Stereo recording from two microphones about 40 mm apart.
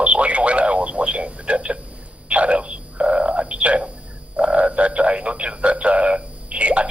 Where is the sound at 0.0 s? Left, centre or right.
Right.